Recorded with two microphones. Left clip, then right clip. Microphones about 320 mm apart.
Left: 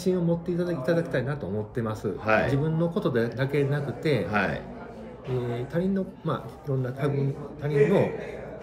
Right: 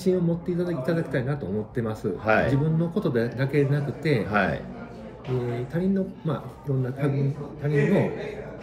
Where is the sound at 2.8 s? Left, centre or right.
Centre.